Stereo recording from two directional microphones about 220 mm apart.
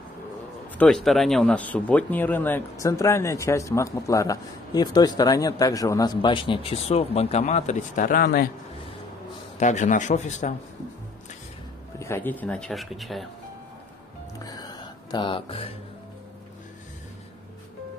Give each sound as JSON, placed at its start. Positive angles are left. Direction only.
{"t": 0.7, "sound": "speech", "side_deg": 0}
{"t": 9.6, "sound": "a man's voice", "side_deg": 35}
{"t": 12.0, "sound": "speech", "side_deg": 10}
{"t": 14.4, "sound": "music", "side_deg": 15}